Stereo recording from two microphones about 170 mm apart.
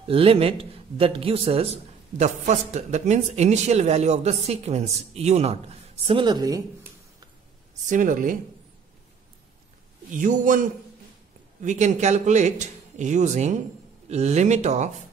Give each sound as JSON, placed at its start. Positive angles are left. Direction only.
{"t": 0.0, "sound": "a man's voice", "side_deg": -35}
{"t": 7.8, "sound": "speech", "side_deg": -50}
{"t": 10.1, "sound": "a man's voice", "side_deg": -50}